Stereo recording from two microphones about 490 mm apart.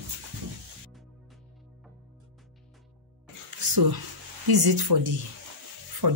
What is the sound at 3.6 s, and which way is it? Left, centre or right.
Speech, right.